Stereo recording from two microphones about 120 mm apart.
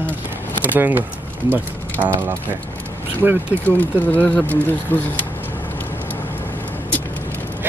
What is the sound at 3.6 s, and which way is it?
A man's voice, 15° left (ahead or behind).